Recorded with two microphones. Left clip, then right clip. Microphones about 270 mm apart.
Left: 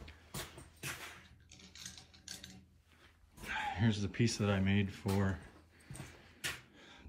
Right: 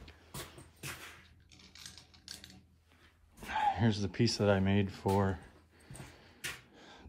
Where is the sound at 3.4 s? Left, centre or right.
Centre.